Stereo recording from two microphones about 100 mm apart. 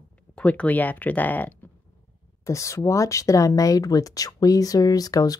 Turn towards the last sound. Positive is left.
turn(degrees=40)  # may be behind; listen again after turning